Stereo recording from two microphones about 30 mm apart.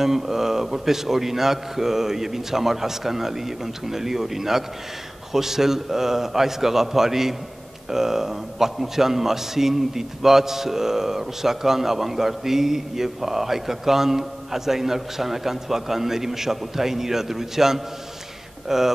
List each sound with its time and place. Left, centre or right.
0.0 s a man's voice: centre